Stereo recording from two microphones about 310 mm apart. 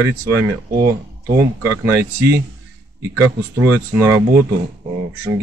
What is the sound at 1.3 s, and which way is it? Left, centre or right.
Speech, centre.